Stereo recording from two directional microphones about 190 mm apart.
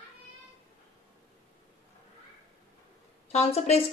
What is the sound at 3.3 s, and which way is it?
Speech, 35° left (ahead or behind).